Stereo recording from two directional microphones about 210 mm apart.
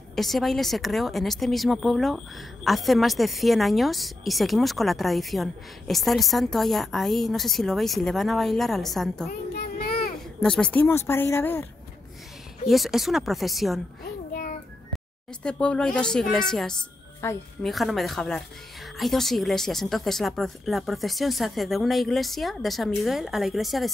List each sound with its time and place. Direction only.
0.1 s speech: centre (ahead or behind)
9.3 s child singing: 45° left (ahead or behind)
10.4 s speech: 5° left (ahead or behind)
12.6 s speech: centre (ahead or behind)
14.3 s child singing: 40° left (ahead or behind)
15.4 s speech: 5° left (ahead or behind)